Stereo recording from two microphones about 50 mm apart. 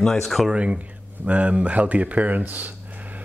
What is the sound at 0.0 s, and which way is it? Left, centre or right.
Speech, centre.